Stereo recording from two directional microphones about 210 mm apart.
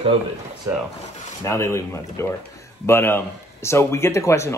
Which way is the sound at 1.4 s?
15° left (ahead or behind).